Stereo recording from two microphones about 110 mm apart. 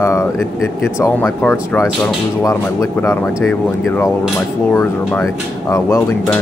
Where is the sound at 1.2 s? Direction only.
15° left (ahead or behind).